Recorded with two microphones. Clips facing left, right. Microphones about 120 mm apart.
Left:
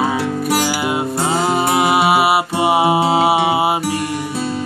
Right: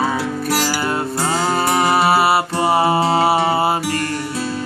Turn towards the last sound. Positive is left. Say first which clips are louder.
# left 1 dB
turn(degrees=10)  # may be behind; listen again after turning